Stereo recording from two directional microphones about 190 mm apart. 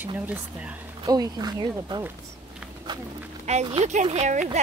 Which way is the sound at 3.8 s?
35° right (ahead or behind).